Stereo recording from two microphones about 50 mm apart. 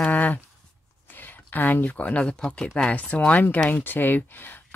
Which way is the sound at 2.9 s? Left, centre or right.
Left.